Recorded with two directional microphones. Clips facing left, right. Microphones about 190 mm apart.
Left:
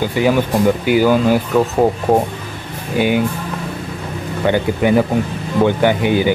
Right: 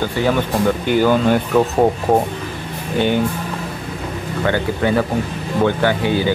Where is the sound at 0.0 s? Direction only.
10° left (ahead or behind).